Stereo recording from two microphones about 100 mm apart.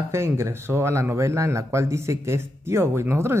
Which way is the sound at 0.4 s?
25° right (ahead or behind).